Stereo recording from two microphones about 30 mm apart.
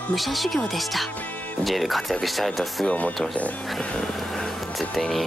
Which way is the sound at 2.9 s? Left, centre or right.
Left.